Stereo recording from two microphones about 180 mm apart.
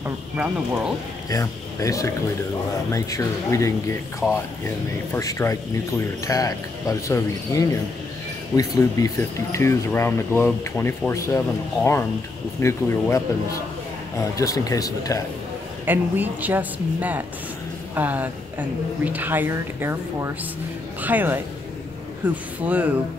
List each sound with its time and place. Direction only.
0.0 s a woman's voice: 10° right (ahead or behind)
1.3 s speech: 20° left (ahead or behind)
4.2 s speech: 5° left (ahead or behind)
4.6 s speech: 15° left (ahead or behind)
14.3 s speech: 20° left (ahead or behind)
15.8 s a woman's voice: 10° right (ahead or behind)